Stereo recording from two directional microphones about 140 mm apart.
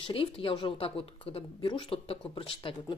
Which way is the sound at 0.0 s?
40° left (ahead or behind).